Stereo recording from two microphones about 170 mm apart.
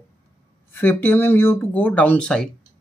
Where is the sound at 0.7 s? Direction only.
10° left (ahead or behind).